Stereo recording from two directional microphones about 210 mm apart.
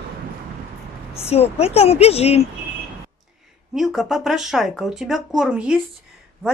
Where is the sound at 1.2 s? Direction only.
30° left (ahead or behind).